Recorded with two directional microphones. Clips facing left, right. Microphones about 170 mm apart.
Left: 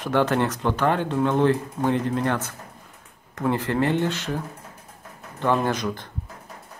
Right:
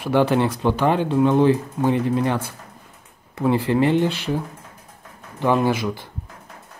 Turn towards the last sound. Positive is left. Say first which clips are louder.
# right 4 dB
turn(degrees=-5)  # may be behind; listen again after turning